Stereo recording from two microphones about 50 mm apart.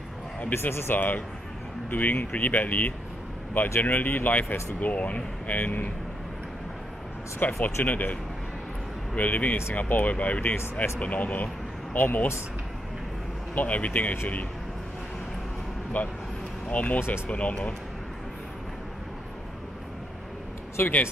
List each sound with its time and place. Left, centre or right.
0.5 s speech: left
3.5 s speech: left
3.8 s speech: left
7.4 s speech: left
13.6 s speech: left
16.0 s speech: left
20.8 s speech: left